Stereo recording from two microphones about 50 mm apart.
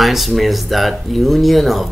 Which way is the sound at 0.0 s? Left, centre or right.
Centre.